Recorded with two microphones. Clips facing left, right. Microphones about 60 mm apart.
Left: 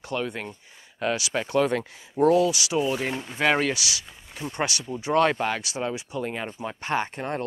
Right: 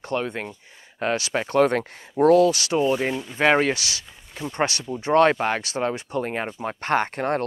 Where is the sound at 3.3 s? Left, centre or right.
Right.